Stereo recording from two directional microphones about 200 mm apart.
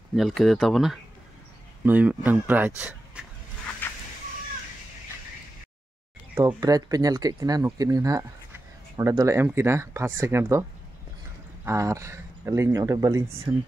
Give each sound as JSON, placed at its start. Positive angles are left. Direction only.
{"t": 0.1, "sound": "speech", "side_deg": 0}
{"t": 3.8, "sound": "chicken", "side_deg": 10}
{"t": 6.3, "sound": "speech", "side_deg": -15}
{"t": 11.6, "sound": "speech", "side_deg": -15}